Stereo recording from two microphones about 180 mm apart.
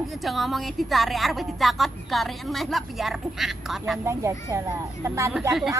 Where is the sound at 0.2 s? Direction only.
Centre (ahead or behind).